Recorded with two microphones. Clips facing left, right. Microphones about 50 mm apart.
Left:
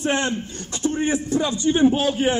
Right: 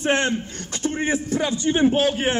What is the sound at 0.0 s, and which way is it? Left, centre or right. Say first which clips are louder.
A man's voice: right 1 dB; right.